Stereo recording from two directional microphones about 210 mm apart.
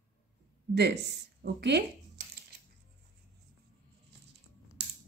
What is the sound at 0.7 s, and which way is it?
Speech, 55° right (ahead or behind).